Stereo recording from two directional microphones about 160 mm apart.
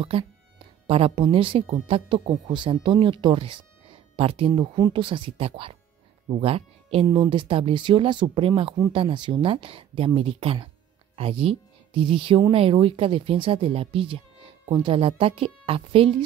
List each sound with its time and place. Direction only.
0.8 s speech: 35° right (ahead or behind)